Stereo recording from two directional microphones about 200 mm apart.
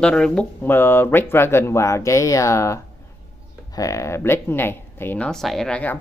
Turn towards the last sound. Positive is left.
turn(degrees=5)  # may be behind; listen again after turning